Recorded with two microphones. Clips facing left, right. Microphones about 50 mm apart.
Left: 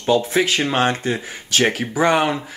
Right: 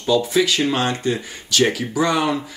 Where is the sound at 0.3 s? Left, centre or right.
Left.